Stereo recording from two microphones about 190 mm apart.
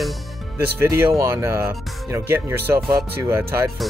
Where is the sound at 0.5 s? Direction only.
10° right (ahead or behind).